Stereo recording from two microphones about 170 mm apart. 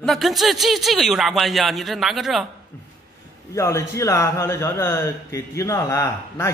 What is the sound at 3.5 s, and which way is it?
A man's voice, 15° left (ahead or behind).